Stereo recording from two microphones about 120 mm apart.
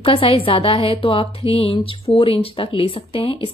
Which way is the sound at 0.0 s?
50° left (ahead or behind).